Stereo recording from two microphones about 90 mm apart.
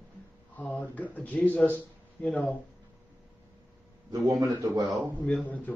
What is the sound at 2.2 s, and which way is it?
Speech, 5° left (ahead or behind).